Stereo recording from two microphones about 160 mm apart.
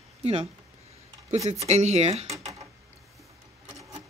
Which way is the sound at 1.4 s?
45° right (ahead or behind).